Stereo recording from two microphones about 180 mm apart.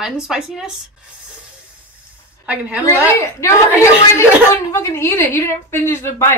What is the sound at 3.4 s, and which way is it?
Speech, 15° left (ahead or behind).